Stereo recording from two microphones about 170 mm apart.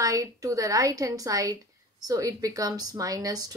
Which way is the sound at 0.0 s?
20° right (ahead or behind).